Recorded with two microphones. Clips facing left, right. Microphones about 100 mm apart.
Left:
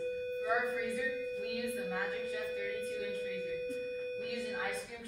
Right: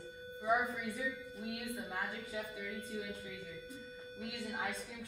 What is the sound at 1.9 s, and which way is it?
A woman's voice, 15° right (ahead or behind).